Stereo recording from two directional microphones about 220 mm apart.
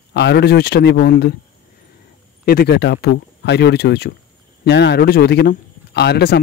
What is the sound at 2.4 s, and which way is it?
Speech, 45° left (ahead or behind).